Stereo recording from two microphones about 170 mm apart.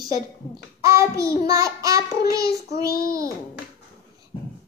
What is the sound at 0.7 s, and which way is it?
Child singing, 15° right (ahead or behind).